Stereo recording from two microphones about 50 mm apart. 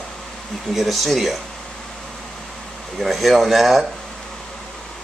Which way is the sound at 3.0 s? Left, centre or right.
Centre.